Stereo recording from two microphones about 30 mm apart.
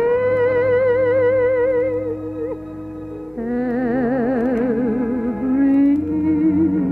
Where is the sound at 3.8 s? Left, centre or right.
Centre.